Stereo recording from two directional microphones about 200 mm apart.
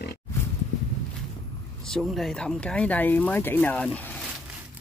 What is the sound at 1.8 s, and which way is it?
Speech, centre (ahead or behind).